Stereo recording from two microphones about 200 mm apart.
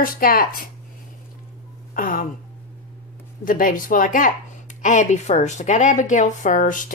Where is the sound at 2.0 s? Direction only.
40° left (ahead or behind).